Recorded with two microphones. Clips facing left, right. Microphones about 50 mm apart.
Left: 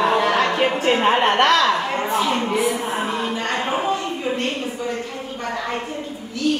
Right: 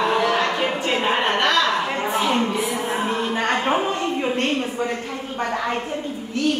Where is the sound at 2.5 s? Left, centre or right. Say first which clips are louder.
Left 4 dB; left.